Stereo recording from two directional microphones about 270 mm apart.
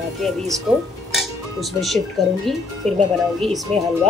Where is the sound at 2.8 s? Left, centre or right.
Right.